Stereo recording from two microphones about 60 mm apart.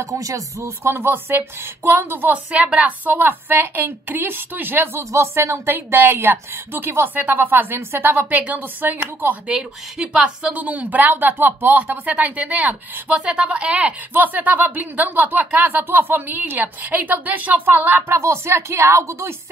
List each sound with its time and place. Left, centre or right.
0.0 s speech: right
0.8 s a woman's voice: right
2.3 s a woman's voice: right
4.9 s a woman's voice: right
5.7 s a woman's voice: right
9.5 s a woman's voice: centre; by 18.1 s right
18.1 s a woman's voice: right